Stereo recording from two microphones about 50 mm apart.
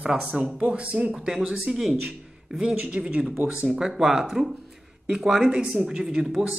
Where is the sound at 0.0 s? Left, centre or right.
Centre.